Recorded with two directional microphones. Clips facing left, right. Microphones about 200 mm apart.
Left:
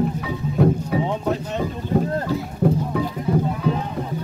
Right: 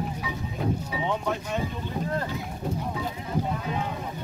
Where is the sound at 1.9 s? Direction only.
50° left (ahead or behind).